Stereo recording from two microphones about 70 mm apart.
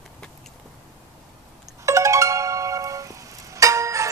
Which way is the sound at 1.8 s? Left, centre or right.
Right.